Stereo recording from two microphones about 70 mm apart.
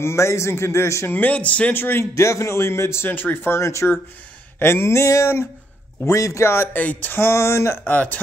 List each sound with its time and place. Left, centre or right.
0.0 s a man's voice: left
1.1 s speech: left
2.1 s a man's voice: left
3.1 s a man's voice: left
6.8 s a man's voice: left
7.8 s speech: left